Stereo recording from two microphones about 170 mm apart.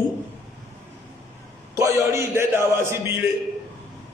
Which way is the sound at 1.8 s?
15° right (ahead or behind).